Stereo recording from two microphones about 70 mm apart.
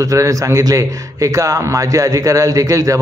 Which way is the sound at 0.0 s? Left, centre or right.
Right.